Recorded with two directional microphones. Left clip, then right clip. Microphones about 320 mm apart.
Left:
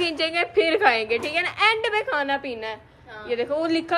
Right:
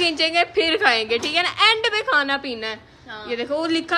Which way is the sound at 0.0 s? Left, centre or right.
Centre.